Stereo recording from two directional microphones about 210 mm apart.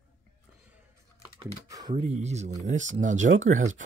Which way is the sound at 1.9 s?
30° right (ahead or behind).